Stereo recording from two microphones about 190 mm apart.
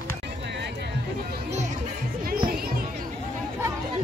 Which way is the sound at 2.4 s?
50° right (ahead or behind).